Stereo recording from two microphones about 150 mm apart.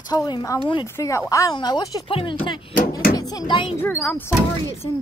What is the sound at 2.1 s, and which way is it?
Speech, 35° left (ahead or behind).